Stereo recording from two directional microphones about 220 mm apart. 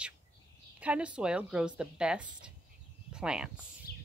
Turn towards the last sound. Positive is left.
turn(degrees=45)  # may be behind; listen again after turning